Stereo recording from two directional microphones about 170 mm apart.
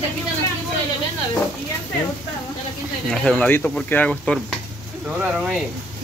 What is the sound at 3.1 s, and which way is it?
A man's voice, 5° left (ahead or behind).